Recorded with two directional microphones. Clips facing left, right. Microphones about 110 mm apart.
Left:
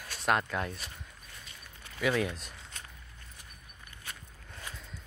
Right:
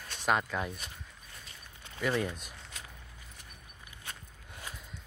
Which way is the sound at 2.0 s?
Centre (ahead or behind).